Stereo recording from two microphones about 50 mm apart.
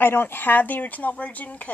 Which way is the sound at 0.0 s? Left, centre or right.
Left.